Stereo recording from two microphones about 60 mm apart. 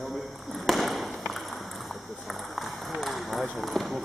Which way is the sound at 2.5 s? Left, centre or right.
Centre.